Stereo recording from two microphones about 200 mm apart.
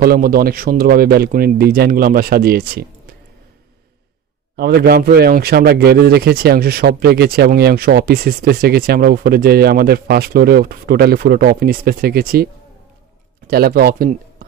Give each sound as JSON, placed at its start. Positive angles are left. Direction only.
{"t": 0.0, "sound": "speech", "side_deg": -45}
{"t": 4.6, "sound": "speech", "side_deg": -50}
{"t": 13.5, "sound": "speech", "side_deg": -50}